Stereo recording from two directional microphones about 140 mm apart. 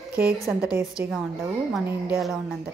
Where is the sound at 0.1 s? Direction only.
10° right (ahead or behind).